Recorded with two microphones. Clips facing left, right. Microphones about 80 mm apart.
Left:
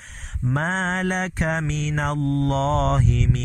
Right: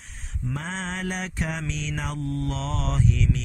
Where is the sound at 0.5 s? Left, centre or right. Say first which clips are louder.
Left 9 dB; left.